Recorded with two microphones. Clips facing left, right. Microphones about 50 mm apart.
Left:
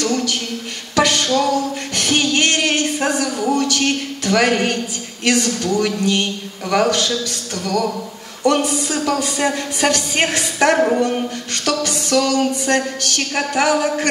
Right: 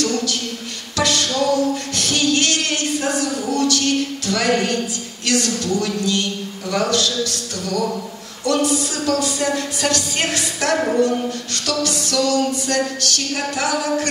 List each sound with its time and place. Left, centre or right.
0.0 s a sound: left
5.2 s a woman's voice: left
5.9 s music: left
8.5 s a woman's voice: left
11.6 s music: left
12.3 s a woman's voice: left